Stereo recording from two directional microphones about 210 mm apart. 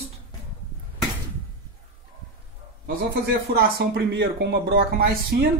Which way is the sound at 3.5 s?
50° right (ahead or behind).